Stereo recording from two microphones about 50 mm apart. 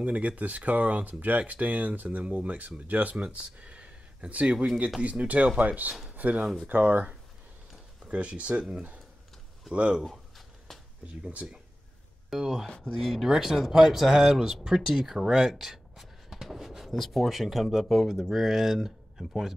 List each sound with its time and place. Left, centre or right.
0.0 s speech: right
9.7 s speech: centre
10.7 s a sound: centre
12.3 s speech: centre
12.6 s speech: left
12.9 s speech: centre